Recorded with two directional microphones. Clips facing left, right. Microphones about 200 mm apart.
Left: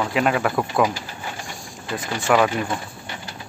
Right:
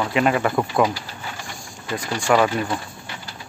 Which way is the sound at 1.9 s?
Centre (ahead or behind).